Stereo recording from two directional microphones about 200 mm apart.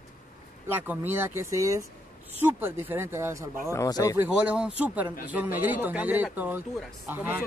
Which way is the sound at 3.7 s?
15° left (ahead or behind).